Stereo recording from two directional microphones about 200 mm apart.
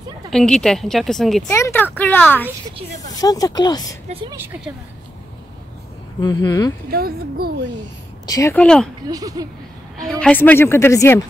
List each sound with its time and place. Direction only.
0.3 s speech: centre (ahead or behind)
1.5 s a woman's voice: 10° left (ahead or behind)
4.1 s speech: 25° right (ahead or behind)
6.2 s speech: 20° left (ahead or behind)
6.9 s a woman's voice: 50° right (ahead or behind)
8.3 s speech: 15° left (ahead or behind)
9.1 s speech: 20° right (ahead or behind)
9.9 s a woman's voice: 5° left (ahead or behind)